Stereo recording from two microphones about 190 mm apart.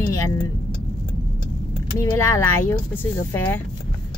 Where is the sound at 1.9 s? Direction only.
15° left (ahead or behind).